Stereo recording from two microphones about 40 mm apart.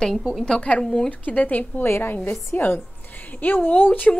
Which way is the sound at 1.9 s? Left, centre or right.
Left.